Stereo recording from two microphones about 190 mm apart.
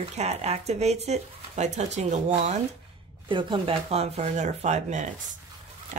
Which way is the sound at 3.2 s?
25° right (ahead or behind).